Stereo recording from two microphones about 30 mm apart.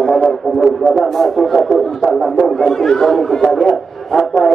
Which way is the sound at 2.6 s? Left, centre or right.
Centre.